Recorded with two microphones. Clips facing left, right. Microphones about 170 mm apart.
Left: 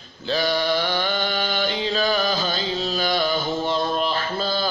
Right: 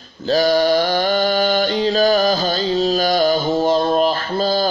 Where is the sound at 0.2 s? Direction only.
40° right (ahead or behind).